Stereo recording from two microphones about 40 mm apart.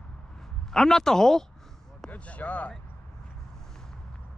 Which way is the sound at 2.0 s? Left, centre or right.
Left.